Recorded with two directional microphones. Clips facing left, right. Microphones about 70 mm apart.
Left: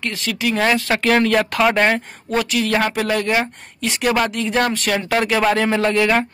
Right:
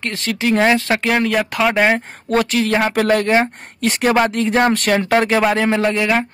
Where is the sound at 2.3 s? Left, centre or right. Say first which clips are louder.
Right 2 dB; right.